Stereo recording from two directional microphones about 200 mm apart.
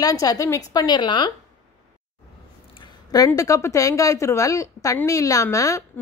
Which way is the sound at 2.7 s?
20° left (ahead or behind).